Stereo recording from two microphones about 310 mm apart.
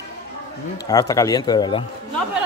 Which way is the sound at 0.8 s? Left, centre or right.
Centre.